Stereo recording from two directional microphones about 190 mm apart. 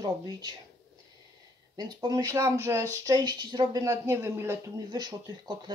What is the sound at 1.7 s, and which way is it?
Speech, 20° right (ahead or behind).